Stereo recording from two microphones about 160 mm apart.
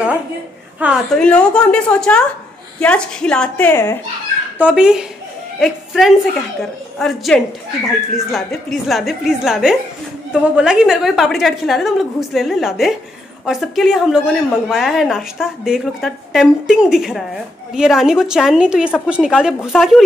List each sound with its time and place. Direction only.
0.7 s a woman's voice: 10° right (ahead or behind)
1.1 s a woman's voice: 5° left (ahead or behind)
4.6 s a woman's voice: 5° right (ahead or behind)